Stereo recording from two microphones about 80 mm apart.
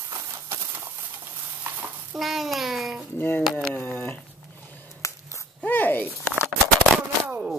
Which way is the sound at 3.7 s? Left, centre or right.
Left.